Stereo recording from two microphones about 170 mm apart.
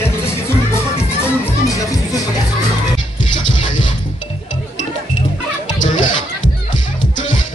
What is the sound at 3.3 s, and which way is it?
Music, 30° left (ahead or behind).